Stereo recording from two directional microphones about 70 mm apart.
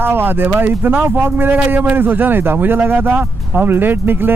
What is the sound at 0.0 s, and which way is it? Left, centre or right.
Speech, right.